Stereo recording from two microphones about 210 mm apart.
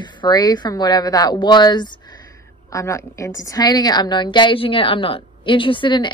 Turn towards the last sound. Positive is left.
turn(degrees=20)  # may be behind; listen again after turning